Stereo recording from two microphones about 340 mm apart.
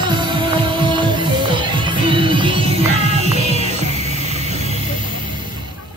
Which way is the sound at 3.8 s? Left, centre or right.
Centre.